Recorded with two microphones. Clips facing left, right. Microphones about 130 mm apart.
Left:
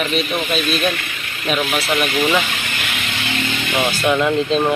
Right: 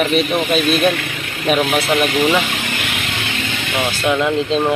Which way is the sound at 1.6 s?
30° right (ahead or behind).